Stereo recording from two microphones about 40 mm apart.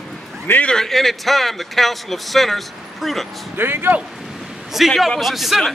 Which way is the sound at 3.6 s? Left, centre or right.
Right.